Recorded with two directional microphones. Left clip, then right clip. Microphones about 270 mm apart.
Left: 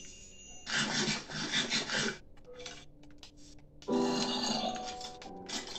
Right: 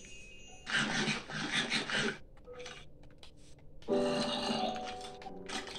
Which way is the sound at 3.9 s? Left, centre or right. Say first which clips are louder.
Even; centre.